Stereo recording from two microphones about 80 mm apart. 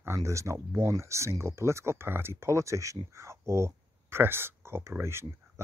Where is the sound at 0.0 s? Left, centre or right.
Right.